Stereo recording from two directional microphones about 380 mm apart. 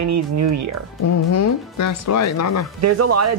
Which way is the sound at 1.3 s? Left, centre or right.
Left.